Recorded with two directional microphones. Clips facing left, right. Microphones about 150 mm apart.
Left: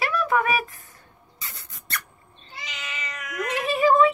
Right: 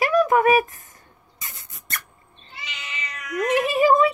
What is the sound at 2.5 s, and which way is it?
Cat, 40° left (ahead or behind).